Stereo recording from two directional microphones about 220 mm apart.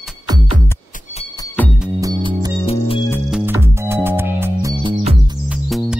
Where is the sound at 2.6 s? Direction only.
25° left (ahead or behind).